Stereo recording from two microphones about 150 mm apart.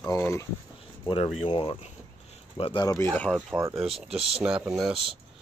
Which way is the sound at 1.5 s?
30° left (ahead or behind).